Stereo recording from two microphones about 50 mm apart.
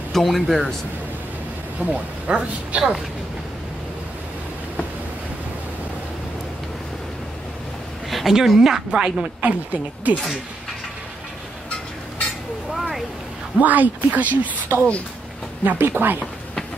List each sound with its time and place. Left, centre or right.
0.1 s speech: centre
1.9 s speech: right
8.1 s a woman's voice: centre
9.2 s speech: right
12.7 s a sound: centre
13.6 s speech: right
14.7 s speech: right
15.6 s speech: right